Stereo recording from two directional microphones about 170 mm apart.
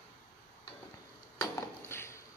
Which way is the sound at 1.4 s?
15° left (ahead or behind).